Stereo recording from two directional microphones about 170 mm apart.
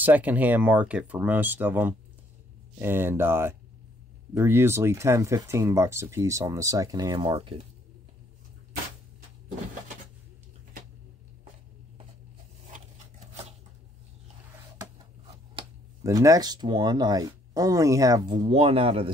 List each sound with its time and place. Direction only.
0.0 s speech: 10° right (ahead or behind); by 7.6 s 35° right (ahead or behind)
12.7 s a sound: 40° right (ahead or behind)
16.0 s speech: 20° right (ahead or behind)